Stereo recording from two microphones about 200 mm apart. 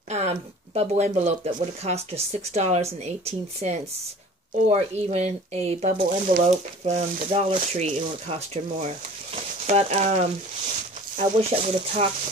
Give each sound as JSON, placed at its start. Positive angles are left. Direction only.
{"t": 0.1, "sound": "speech", "side_deg": -35}
{"t": 11.1, "sound": "speech", "side_deg": -35}